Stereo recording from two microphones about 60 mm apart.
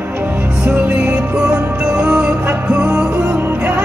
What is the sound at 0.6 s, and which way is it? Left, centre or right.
Music, centre.